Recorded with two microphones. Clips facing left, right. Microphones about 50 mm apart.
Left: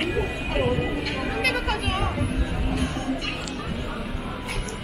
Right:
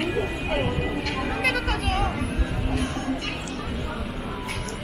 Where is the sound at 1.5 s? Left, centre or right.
Centre.